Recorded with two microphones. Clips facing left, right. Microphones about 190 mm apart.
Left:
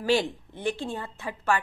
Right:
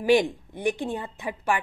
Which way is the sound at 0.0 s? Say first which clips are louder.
Right 4 dB; 15° right (ahead or behind).